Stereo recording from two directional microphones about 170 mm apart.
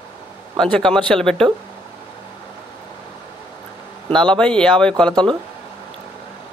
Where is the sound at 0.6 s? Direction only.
5° left (ahead or behind).